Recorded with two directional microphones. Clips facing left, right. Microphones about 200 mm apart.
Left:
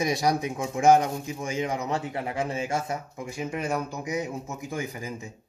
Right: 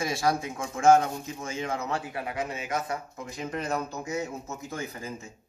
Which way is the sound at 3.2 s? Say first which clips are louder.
Left 2 dB; 10° left (ahead or behind).